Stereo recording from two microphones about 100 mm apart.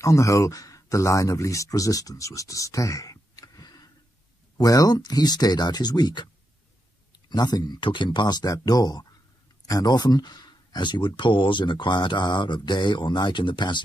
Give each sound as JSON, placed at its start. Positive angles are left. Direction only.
{"t": 0.0, "sound": "speech", "side_deg": 30}
{"t": 7.2, "sound": "speech", "side_deg": 45}